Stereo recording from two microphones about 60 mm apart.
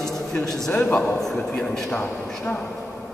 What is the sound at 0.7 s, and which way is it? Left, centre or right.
Speech, left.